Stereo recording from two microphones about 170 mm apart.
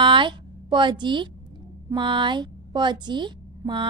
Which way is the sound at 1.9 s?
30° right (ahead or behind).